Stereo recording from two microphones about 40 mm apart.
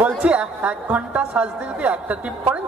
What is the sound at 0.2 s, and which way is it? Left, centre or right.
A woman's voice, right.